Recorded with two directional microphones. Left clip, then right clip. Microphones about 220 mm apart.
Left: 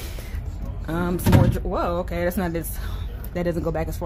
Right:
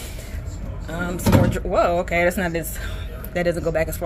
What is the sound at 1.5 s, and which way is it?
Speech, 15° left (ahead or behind).